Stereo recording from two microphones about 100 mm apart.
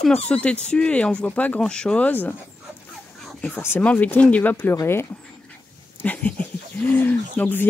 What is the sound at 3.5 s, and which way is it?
Speech, 20° left (ahead or behind).